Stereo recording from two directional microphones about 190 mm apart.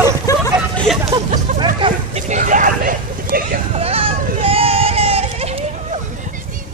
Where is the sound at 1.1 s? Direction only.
25° right (ahead or behind).